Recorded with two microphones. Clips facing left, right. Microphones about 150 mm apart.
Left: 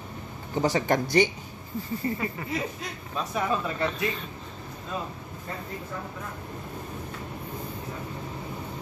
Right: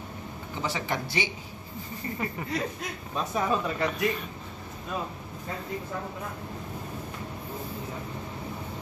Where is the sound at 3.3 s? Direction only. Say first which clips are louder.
Even; 15° right (ahead or behind).